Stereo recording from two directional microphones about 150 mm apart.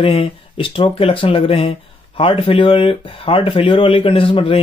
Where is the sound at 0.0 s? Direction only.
35° left (ahead or behind).